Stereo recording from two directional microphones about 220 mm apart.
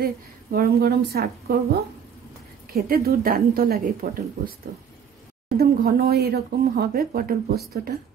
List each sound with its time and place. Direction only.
0.0 s a woman's voice: 45° right (ahead or behind)
2.7 s speech: 45° right (ahead or behind)
5.6 s speech: 45° right (ahead or behind)